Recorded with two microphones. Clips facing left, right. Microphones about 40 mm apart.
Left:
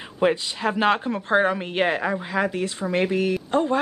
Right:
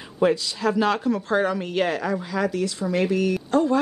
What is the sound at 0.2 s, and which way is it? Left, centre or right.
A woman's voice, left.